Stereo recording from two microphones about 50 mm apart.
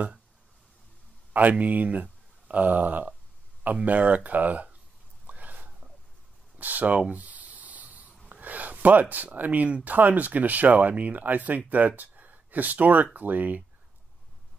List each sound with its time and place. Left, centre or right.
1.3 s speech: right
5.2 s whispering: right
6.6 s speech: right
7.2 s a sound: right
9.1 s speech: right